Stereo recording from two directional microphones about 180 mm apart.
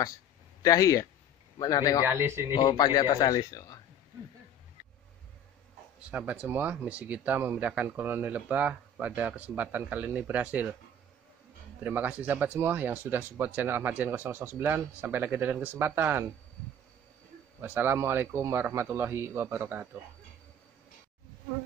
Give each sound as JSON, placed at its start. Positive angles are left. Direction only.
{"t": 0.6, "sound": "speech", "side_deg": 20}
{"t": 2.0, "sound": "speech", "side_deg": -15}
{"t": 2.5, "sound": "speech", "side_deg": 25}
{"t": 5.9, "sound": "speech", "side_deg": -5}
{"t": 11.8, "sound": "speech", "side_deg": -10}
{"t": 17.6, "sound": "speech", "side_deg": -10}